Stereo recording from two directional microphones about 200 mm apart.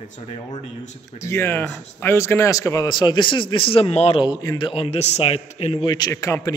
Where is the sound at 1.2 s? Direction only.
15° left (ahead or behind).